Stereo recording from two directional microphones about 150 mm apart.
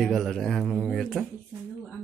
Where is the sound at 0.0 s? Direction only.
Centre (ahead or behind).